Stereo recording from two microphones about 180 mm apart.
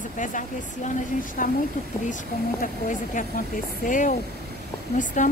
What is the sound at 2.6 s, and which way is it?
Speech, 45° left (ahead or behind).